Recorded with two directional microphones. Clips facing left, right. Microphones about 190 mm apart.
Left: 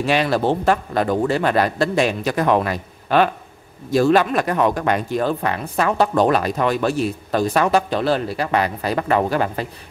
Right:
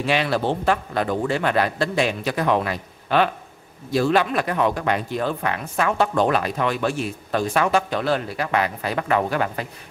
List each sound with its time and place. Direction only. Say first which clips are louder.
0.0 s a man's voice: left 3 dB; 40° left (ahead or behind)